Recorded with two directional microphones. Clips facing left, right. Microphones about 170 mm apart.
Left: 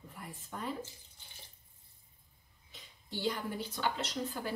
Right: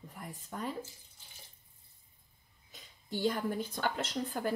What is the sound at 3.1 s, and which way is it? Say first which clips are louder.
A woman's voice: right 4 dB; 50° right (ahead or behind).